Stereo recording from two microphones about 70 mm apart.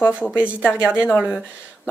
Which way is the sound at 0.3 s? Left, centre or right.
Centre.